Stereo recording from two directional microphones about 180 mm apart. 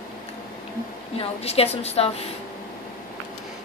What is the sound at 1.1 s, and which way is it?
A woman's voice, 35° left (ahead or behind).